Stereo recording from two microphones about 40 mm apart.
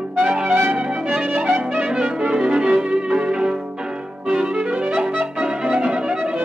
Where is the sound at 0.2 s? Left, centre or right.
Right.